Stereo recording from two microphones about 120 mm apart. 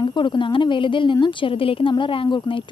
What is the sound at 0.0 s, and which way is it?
Speech, 40° left (ahead or behind).